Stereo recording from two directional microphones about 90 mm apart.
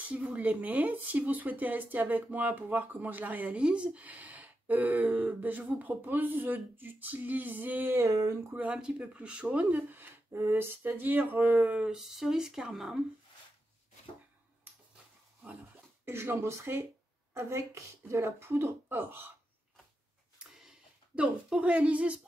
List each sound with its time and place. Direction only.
0.1 s speech: 15° right (ahead or behind)
7.9 s speech: 35° right (ahead or behind)
8.5 s speech: 10° right (ahead or behind)
16.1 s speech: 30° right (ahead or behind)
20.3 s a sound: 10° right (ahead or behind)